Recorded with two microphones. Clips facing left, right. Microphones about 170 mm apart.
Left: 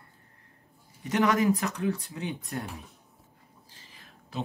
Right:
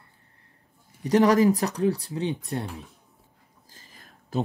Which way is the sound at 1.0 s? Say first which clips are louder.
Right 6 dB; 35° right (ahead or behind).